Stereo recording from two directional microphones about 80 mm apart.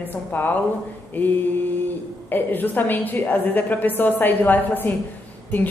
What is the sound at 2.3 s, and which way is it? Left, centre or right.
A woman's voice, left.